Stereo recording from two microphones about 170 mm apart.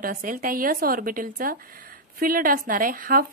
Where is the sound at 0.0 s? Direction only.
55° right (ahead or behind).